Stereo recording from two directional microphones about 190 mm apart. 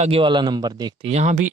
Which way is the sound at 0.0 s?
30° right (ahead or behind).